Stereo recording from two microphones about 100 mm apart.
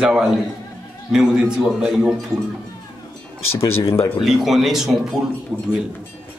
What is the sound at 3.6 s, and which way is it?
Speech, 70° left (ahead or behind).